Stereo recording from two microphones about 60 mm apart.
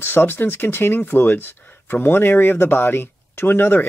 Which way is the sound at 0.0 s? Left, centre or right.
Left.